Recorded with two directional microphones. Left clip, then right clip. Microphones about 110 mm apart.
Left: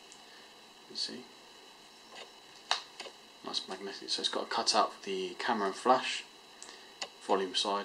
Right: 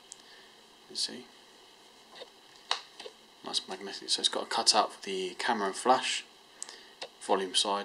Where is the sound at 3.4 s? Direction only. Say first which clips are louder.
Right 3 dB; 25° right (ahead or behind).